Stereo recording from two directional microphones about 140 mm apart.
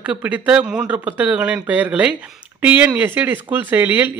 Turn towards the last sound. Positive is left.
turn(degrees=-15)  # may be behind; listen again after turning